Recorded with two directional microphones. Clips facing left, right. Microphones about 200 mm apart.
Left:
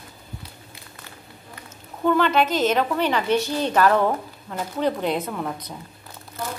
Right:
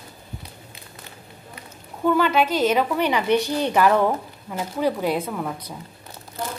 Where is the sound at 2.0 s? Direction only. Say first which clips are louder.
Even; 5° right (ahead or behind).